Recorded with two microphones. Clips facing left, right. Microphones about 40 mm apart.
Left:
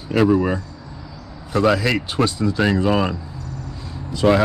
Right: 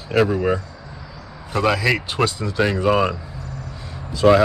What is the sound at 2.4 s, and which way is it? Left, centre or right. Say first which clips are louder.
Speech: left 1 dB; right.